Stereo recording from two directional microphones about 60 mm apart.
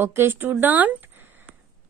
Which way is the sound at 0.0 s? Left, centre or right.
Right.